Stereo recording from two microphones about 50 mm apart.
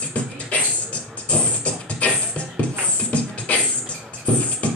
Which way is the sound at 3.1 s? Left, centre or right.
Left.